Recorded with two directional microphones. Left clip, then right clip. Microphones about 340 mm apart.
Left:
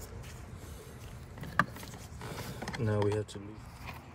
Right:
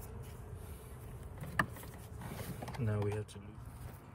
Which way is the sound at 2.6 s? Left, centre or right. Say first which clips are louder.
Left 8 dB; left.